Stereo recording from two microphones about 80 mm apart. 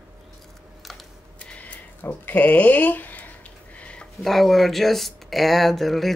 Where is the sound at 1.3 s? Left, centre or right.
Centre.